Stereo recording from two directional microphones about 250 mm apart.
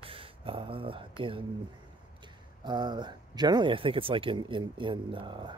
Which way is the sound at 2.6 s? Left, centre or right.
Centre.